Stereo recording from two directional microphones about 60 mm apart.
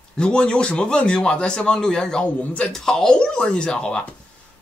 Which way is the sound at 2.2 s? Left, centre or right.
Left.